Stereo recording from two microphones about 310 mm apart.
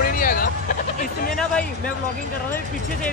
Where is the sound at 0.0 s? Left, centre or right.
Left.